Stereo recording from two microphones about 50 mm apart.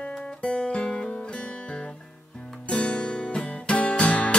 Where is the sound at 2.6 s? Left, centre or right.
Left.